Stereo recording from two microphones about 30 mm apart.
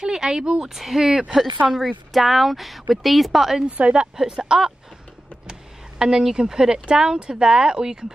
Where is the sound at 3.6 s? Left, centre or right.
Right.